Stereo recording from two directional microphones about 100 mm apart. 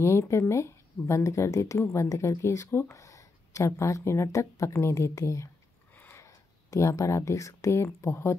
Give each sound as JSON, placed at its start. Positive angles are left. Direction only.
{"t": 0.0, "sound": "a woman's voice", "side_deg": 30}